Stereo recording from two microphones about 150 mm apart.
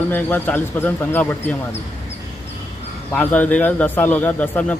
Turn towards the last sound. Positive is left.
turn(degrees=10)  # may be behind; listen again after turning